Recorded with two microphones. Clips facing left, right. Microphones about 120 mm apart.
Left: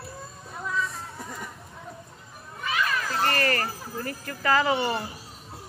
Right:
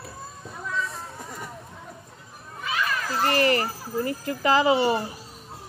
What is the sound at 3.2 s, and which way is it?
Speech, 20° right (ahead or behind).